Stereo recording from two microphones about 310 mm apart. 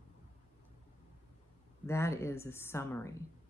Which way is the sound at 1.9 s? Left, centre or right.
Centre.